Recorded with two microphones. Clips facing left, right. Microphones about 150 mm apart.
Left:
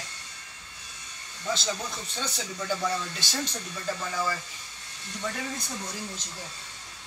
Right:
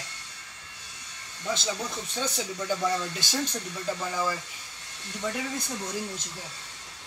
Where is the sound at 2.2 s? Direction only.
10° right (ahead or behind).